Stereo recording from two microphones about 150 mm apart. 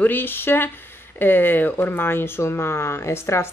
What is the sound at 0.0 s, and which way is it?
A woman's voice, 15° left (ahead or behind).